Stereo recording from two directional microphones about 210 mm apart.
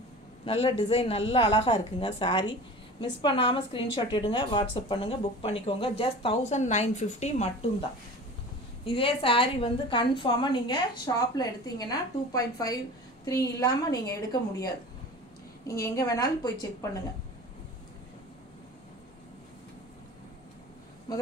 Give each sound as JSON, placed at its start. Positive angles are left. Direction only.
{"t": 0.5, "sound": "a woman's voice", "side_deg": 25}
{"t": 8.8, "sound": "a woman's voice", "side_deg": 25}